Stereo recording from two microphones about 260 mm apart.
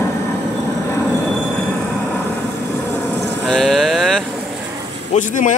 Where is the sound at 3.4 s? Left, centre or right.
Centre.